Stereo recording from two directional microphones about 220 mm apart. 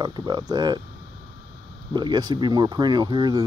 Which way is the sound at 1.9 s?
20° right (ahead or behind).